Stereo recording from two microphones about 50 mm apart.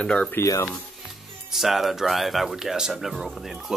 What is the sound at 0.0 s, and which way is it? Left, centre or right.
Speech, centre.